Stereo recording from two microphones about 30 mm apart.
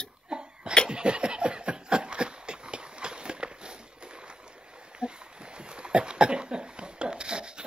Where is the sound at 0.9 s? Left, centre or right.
Right.